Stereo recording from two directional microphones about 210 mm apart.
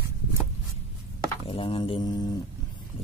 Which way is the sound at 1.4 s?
25° left (ahead or behind).